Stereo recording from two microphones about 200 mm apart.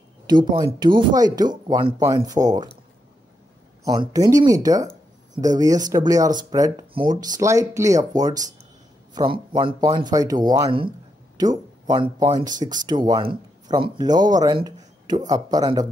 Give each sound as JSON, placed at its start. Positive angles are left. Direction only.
{"t": 0.3, "sound": "speech", "side_deg": -20}
{"t": 3.8, "sound": "speech", "side_deg": -20}